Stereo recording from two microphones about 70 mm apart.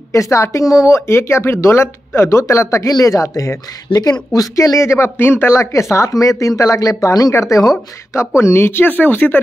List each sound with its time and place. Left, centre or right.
0.1 s speech: left
4.7 s speech: left
5.5 s speech: left
8.4 s speech: left